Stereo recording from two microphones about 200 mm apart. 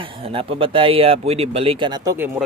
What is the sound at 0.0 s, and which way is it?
A man's voice, 25° right (ahead or behind).